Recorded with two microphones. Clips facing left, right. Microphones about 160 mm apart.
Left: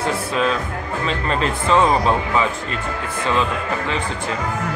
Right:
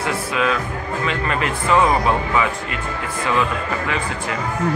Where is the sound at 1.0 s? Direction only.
30° left (ahead or behind).